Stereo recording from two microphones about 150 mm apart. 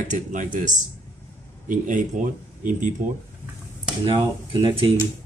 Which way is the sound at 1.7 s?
60° right (ahead or behind).